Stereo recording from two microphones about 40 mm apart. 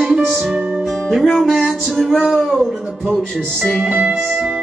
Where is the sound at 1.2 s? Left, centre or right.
Centre.